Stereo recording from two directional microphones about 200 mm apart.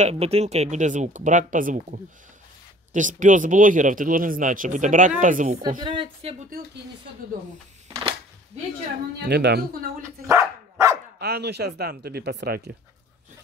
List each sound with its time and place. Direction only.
0.0 s speech: 30° right (ahead or behind)
5.6 s a woman's voice: 20° right (ahead or behind)
9.2 s speech: 55° right (ahead or behind)
10.2 s dog: 15° right (ahead or behind)
11.1 s speech: 55° right (ahead or behind)